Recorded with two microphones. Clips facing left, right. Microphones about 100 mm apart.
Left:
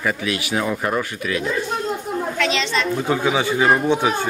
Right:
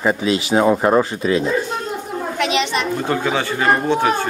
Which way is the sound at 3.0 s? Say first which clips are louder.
Even; 10° left (ahead or behind).